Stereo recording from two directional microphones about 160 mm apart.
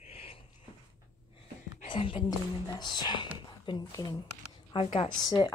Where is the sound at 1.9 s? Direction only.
35° left (ahead or behind).